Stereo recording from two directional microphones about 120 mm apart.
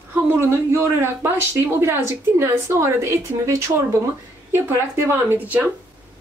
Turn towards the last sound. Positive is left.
turn(degrees=-15)  # may be behind; listen again after turning